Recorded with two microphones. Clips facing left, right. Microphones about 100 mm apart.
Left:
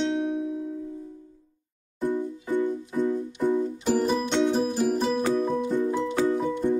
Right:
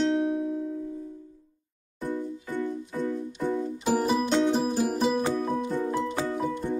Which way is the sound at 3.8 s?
5° right (ahead or behind).